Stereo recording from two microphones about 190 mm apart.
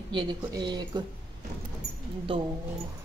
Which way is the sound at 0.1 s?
25° right (ahead or behind).